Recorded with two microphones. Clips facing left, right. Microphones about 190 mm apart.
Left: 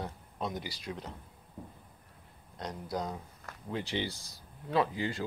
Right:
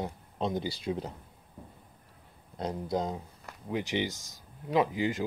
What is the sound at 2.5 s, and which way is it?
Speech, 25° right (ahead or behind).